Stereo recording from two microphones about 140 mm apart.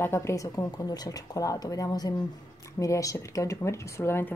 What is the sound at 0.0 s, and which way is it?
A woman's voice, 20° left (ahead or behind).